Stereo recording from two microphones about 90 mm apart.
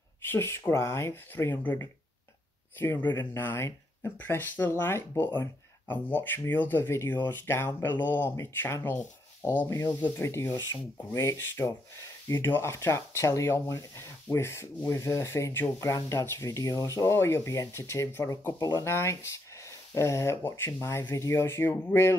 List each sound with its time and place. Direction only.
0.2 s speech: 25° left (ahead or behind)
2.8 s speech: 25° left (ahead or behind)